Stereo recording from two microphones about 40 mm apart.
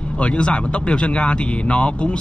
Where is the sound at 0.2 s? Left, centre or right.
Left.